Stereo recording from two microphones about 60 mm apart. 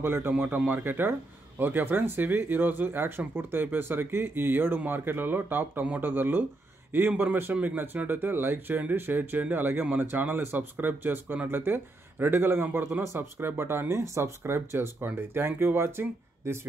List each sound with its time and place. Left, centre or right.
0.0 s speech: right
0.3 s speech: right